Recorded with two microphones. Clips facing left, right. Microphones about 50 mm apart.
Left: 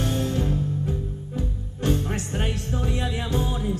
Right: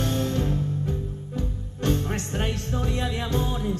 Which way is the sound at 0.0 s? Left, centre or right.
Centre.